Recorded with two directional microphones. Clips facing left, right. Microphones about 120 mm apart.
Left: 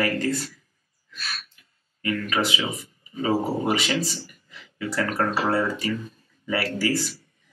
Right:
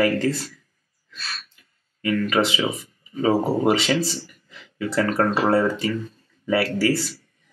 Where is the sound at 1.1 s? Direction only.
30° right (ahead or behind).